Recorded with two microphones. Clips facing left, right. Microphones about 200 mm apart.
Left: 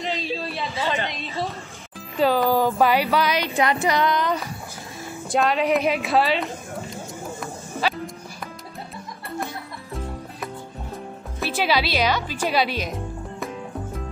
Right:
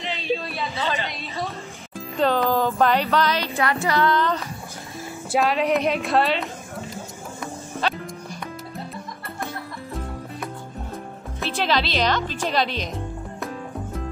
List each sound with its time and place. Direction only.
0.1 s a sound: 35° left (ahead or behind)
1.0 s a sound: 15° left (ahead or behind)
2.0 s speech: 5° left (ahead or behind)
5.3 s a woman's voice: centre (ahead or behind)
7.8 s music: 5° left (ahead or behind)
11.3 s speech: 5° left (ahead or behind)